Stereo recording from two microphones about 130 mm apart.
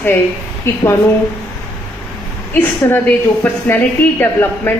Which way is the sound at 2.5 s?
15° left (ahead or behind).